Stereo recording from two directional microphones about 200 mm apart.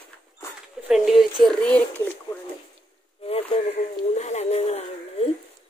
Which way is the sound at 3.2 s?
30° left (ahead or behind).